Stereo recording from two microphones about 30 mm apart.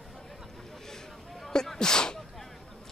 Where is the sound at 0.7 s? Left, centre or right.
Centre.